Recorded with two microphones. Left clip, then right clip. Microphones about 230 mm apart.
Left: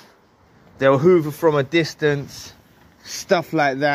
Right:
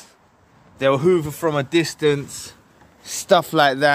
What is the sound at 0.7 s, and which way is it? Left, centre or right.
Speech, centre.